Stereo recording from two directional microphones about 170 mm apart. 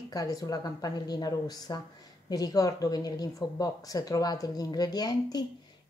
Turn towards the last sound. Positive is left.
turn(degrees=25)  # may be behind; listen again after turning